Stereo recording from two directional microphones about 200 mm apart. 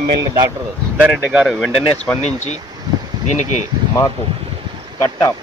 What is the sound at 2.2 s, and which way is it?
Speech, 35° left (ahead or behind).